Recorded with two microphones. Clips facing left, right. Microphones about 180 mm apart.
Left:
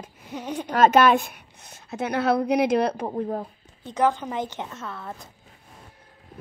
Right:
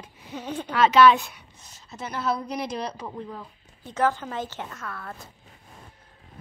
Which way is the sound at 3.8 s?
15° left (ahead or behind).